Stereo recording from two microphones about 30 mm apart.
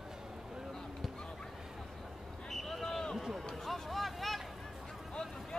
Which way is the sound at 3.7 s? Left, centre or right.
Centre.